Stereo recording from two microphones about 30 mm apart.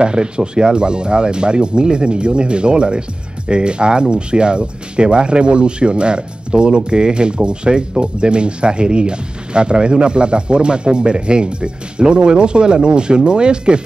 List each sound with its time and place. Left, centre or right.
0.0 s speech: right